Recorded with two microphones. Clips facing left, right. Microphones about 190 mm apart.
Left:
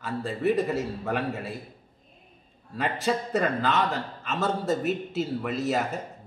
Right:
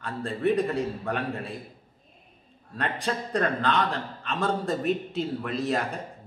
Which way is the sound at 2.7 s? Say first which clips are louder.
Left 3 dB; 5° left (ahead or behind).